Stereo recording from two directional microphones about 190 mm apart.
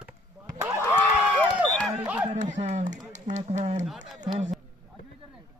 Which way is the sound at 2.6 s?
40° right (ahead or behind).